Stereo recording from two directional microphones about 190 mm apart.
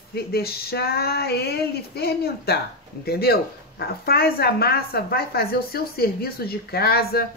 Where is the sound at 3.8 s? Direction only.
55° left (ahead or behind).